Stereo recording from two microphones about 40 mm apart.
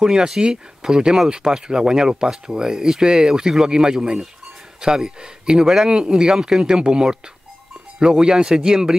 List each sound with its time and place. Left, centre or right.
0.0 s speech: centre